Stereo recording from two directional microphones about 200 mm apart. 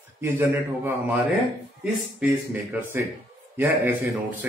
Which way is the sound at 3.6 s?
10° right (ahead or behind).